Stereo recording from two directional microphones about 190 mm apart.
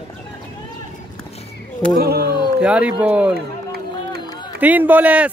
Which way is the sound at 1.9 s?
55° right (ahead or behind).